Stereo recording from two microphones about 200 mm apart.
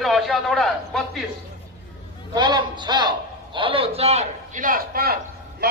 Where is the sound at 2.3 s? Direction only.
20° right (ahead or behind).